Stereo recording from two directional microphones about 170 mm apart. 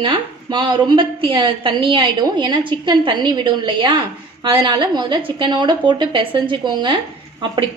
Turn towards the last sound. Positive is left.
turn(degrees=-25)  # may be behind; listen again after turning